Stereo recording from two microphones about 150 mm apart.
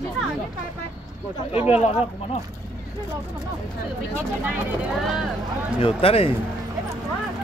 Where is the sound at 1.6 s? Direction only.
10° right (ahead or behind).